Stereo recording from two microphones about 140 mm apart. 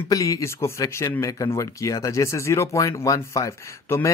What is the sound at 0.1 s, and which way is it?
Speech, 25° left (ahead or behind).